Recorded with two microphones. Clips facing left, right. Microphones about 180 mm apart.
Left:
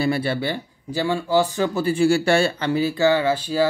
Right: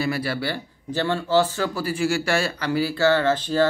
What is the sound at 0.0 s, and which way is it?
Speech, 25° left (ahead or behind).